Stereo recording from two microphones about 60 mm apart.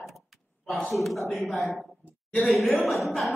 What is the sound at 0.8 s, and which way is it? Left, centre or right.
A woman's voice, centre.